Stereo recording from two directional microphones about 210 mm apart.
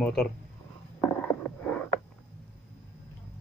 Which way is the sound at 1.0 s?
10° left (ahead or behind).